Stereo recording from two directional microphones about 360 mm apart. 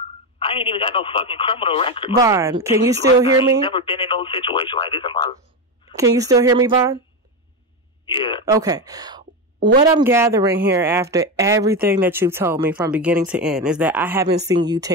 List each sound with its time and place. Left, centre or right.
0.4 s speech: centre
2.2 s speech: centre
3.6 s speech: centre
5.9 s speech: centre
8.0 s speech: centre
8.5 s a sound: centre
9.7 s speech: centre
10.0 s speech: centre
14.3 s speech: right
14.6 s speech: centre